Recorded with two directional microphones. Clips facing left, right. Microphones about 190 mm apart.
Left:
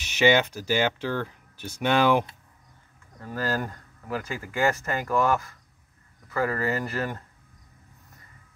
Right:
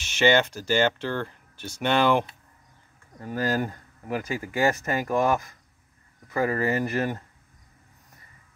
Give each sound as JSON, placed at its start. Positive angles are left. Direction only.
{"t": 0.2, "sound": "speech", "side_deg": 10}
{"t": 3.2, "sound": "speech", "side_deg": -15}